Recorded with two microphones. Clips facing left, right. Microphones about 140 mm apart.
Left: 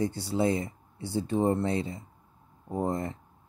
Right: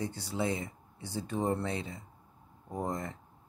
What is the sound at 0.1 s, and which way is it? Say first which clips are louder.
Speech: left 6 dB; 30° left (ahead or behind).